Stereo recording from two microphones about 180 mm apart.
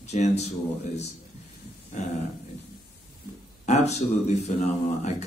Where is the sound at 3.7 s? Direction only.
40° left (ahead or behind).